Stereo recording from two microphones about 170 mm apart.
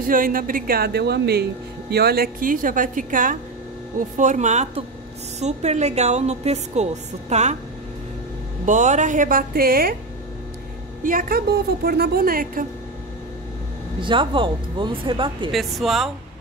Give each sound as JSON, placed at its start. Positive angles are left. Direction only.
{"t": 0.0, "sound": "a woman's voice", "side_deg": -55}
{"t": 8.6, "sound": "a woman's voice", "side_deg": -45}
{"t": 11.1, "sound": "a woman's voice", "side_deg": -55}
{"t": 14.0, "sound": "speech", "side_deg": -30}
{"t": 15.5, "sound": "speech", "side_deg": 0}